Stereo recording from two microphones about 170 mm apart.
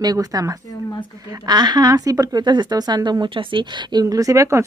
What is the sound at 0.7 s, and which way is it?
Speech, 25° left (ahead or behind).